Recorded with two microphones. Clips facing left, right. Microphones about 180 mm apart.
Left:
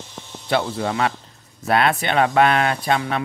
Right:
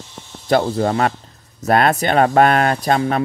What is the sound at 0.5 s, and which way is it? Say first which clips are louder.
Speech: right 5 dB; 40° right (ahead or behind).